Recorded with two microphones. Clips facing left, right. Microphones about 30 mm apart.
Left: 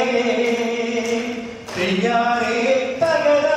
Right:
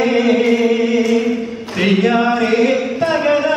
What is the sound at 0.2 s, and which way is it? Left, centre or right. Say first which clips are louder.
Chant: right 6 dB; centre.